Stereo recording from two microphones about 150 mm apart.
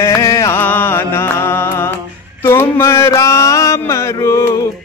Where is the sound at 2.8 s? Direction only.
20° left (ahead or behind).